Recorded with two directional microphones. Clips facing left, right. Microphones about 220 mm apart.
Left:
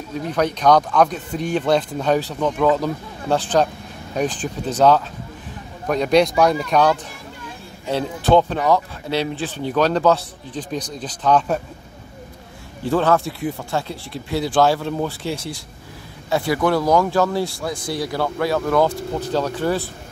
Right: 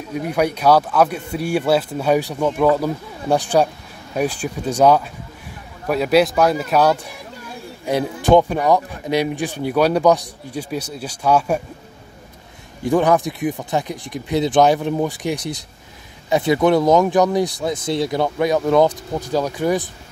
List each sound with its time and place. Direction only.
0.1 s speech: 10° right (ahead or behind)
12.8 s speech: 15° right (ahead or behind)